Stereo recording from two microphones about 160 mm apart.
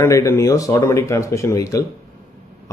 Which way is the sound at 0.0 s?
20° left (ahead or behind).